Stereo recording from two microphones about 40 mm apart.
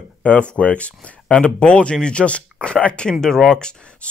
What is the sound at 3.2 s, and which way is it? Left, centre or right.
Speech, centre.